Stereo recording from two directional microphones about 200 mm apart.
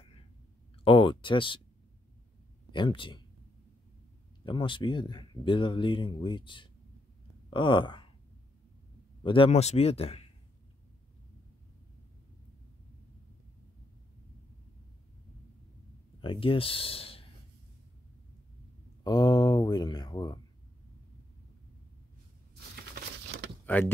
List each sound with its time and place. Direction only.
0.8 s speech: 25° left (ahead or behind)
2.7 s speech: 25° left (ahead or behind)
4.5 s speech: 25° left (ahead or behind)
9.2 s speech: 25° left (ahead or behind)
16.2 s speech: 25° left (ahead or behind)
19.0 s speech: 20° left (ahead or behind)
22.9 s a sound: 50° right (ahead or behind)
23.6 s door: 10° left (ahead or behind)